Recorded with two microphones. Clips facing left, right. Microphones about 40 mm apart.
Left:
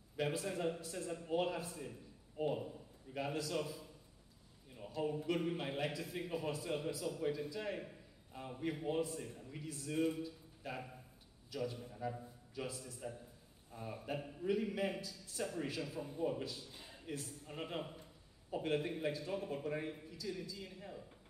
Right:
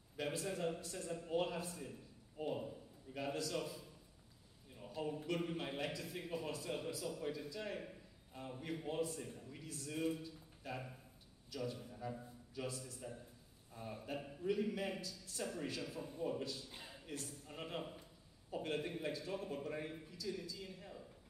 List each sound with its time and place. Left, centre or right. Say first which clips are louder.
0.2 s a man's voice: left 3 dB; centre
13.7 s a man's voice: left 2 dB; left
14.0 s a man's voice: left 2 dB; centre
16.9 s a sound: left 4 dB; centre
17.5 s a man's voice: left 3 dB; centre